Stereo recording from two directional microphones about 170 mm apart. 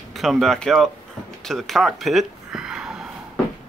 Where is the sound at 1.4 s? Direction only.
Centre (ahead or behind).